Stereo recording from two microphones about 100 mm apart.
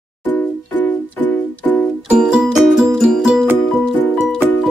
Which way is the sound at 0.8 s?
20° left (ahead or behind).